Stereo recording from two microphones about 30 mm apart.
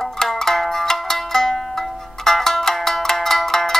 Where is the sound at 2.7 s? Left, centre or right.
Centre.